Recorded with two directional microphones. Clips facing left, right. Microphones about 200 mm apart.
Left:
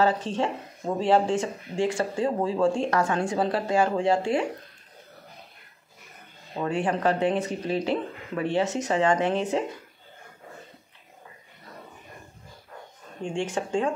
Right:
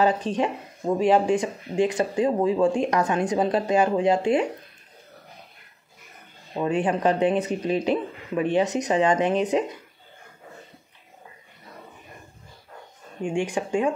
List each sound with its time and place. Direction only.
0.0 s speech: 15° right (ahead or behind)
6.6 s speech: 20° right (ahead or behind)
13.2 s speech: 15° right (ahead or behind)